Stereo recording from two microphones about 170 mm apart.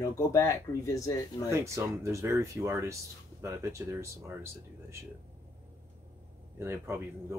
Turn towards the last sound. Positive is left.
turn(degrees=-15)  # may be behind; listen again after turning